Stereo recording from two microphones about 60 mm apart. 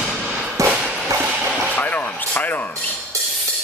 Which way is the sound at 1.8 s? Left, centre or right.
Left.